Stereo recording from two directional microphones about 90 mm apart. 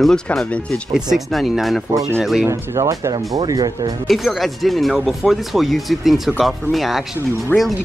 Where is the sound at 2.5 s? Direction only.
35° right (ahead or behind).